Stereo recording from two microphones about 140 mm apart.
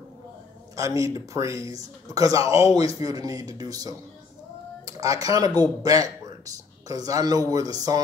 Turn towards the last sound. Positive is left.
turn(degrees=-25)  # may be behind; listen again after turning